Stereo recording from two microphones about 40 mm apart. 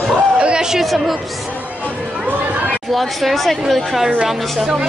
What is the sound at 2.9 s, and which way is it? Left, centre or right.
A woman's voice, centre.